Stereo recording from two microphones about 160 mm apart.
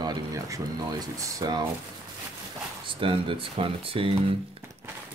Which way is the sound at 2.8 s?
35° right (ahead or behind).